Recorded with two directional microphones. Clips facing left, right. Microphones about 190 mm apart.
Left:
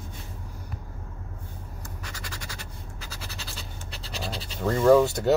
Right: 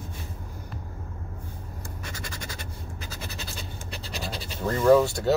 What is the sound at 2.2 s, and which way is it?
Scratch, 25° right (ahead or behind).